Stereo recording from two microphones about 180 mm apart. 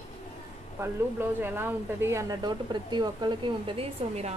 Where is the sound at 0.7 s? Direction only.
10° right (ahead or behind).